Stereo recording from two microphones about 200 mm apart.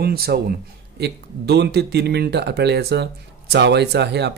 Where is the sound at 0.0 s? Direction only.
50° right (ahead or behind).